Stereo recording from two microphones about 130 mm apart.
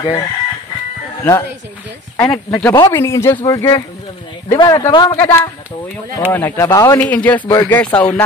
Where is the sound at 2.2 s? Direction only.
15° left (ahead or behind).